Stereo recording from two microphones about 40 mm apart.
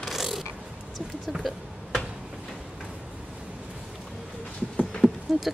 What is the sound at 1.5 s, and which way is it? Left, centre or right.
Speech, centre.